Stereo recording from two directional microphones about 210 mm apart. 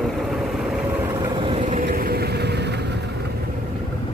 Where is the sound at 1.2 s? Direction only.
20° right (ahead or behind).